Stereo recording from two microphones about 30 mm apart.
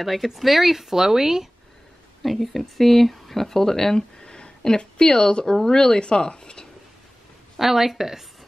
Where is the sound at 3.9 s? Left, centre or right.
Left.